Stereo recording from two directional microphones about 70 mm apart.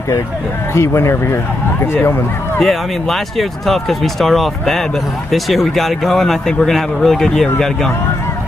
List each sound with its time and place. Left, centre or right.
0.7 s speech: left
2.6 s speech: centre